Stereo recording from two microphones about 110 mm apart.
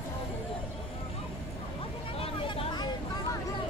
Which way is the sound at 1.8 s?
60° left (ahead or behind).